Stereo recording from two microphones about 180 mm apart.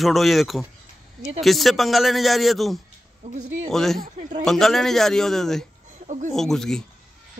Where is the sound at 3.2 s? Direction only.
40° right (ahead or behind).